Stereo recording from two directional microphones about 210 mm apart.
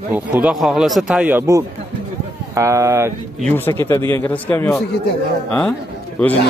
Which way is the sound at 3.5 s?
10° left (ahead or behind).